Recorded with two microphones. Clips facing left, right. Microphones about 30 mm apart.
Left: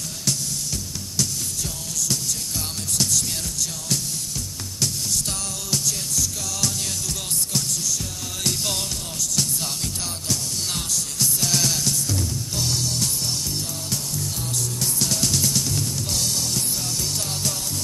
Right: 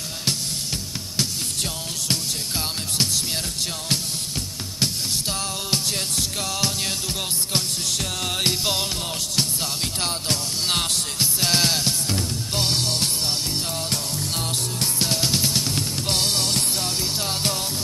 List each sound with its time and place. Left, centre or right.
1.6 s music: right
4.7 s music: right
10.0 s music: right
14.8 s drum kit: right